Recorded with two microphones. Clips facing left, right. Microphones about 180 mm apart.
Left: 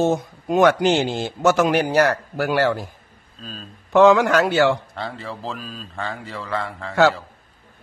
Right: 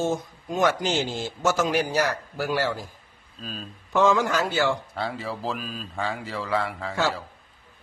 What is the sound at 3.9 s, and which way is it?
Speech, 70° left (ahead or behind).